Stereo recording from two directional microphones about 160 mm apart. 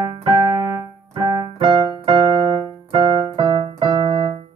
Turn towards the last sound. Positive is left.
turn(degrees=-30)  # may be behind; listen again after turning